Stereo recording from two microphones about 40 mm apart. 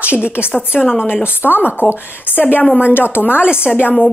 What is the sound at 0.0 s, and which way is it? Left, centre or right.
Speech, right.